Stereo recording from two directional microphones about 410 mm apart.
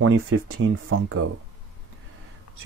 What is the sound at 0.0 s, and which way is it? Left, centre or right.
Speech, right.